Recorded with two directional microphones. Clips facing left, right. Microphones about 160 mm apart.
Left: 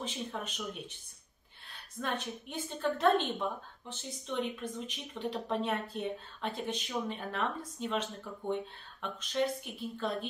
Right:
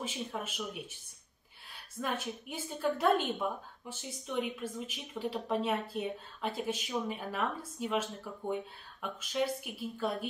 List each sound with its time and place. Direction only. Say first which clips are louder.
0.0 s a woman's voice: even; 5° right (ahead or behind)